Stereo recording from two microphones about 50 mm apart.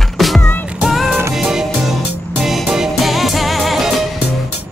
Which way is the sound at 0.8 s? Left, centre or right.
Centre.